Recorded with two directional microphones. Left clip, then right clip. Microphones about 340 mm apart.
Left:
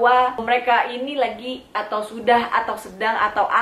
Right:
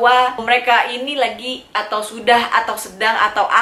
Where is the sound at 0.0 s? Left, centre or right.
Centre.